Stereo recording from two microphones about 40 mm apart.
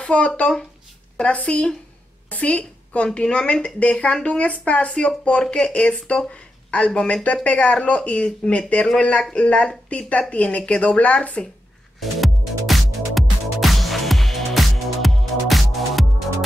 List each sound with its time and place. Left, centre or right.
0.0 s speech: left
2.2 s a sound: left
3.2 s speech: left
5.7 s speech: left
12.0 s music: centre